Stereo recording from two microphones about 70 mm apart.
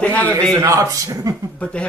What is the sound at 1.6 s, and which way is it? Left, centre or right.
Speech, centre.